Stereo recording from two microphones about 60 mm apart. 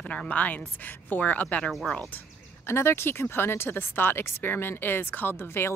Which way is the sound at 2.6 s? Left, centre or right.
Left.